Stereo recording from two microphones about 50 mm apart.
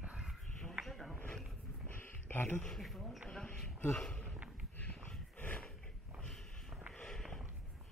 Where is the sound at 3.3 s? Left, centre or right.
Centre.